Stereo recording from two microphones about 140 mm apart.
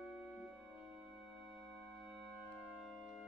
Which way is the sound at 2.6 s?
5° right (ahead or behind).